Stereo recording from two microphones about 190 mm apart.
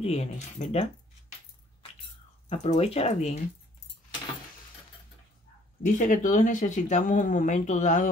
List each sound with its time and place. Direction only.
0.0 s speech: 35° left (ahead or behind)
2.5 s speech: 30° left (ahead or behind)
5.8 s speech: 45° left (ahead or behind)